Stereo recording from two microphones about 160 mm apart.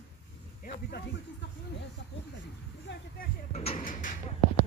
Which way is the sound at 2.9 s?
90° left.